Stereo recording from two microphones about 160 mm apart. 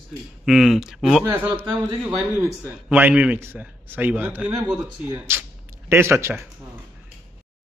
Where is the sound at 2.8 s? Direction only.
10° right (ahead or behind).